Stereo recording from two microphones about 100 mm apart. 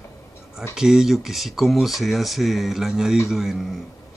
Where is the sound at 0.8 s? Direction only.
5° right (ahead or behind).